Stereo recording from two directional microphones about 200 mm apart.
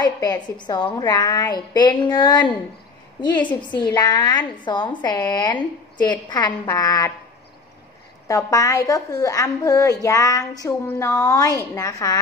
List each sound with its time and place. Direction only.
0.0 s a woman's voice: 20° left (ahead or behind)
8.3 s a woman's voice: 15° left (ahead or behind)